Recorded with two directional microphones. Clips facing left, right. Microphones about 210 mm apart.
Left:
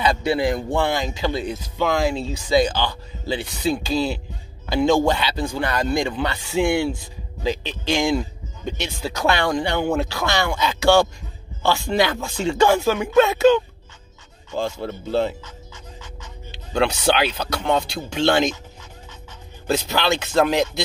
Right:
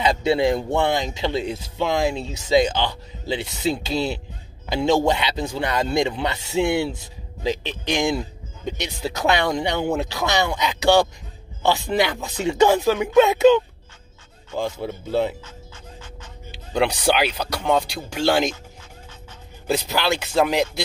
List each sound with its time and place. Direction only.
0.0 s speech: 25° right (ahead or behind)
14.6 s speech: 15° right (ahead or behind)
16.7 s speech: 15° right (ahead or behind)
19.7 s speech: 10° right (ahead or behind)